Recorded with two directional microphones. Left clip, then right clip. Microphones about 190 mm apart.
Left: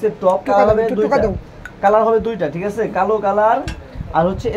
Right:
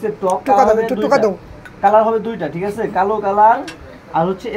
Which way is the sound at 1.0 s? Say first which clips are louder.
Right 1 dB; 10° right (ahead or behind).